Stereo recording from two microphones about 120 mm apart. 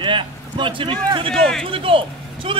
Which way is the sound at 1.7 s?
50° right (ahead or behind).